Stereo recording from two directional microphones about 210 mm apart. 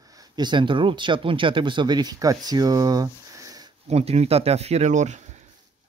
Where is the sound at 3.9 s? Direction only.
30° right (ahead or behind).